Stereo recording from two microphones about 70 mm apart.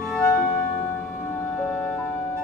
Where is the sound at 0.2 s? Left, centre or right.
Left.